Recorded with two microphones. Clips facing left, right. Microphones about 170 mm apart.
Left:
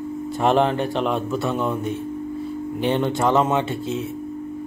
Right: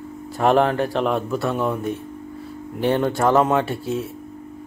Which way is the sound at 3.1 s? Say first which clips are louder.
Right 2 dB; 20° left (ahead or behind).